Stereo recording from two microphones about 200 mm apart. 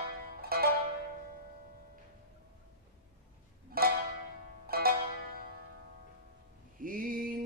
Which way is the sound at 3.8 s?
50° right (ahead or behind).